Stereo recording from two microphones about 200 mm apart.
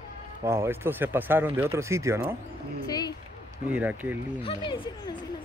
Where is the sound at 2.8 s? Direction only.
20° left (ahead or behind).